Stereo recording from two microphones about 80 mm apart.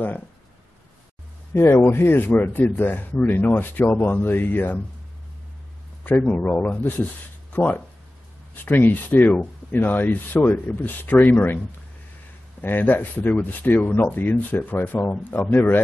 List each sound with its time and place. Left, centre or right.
1.5 s speech: left
6.0 s speech: centre
12.6 s speech: left